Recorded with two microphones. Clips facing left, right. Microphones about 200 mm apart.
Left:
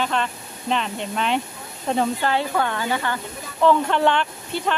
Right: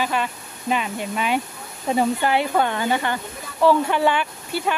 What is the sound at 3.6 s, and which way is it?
Speech, 10° right (ahead or behind).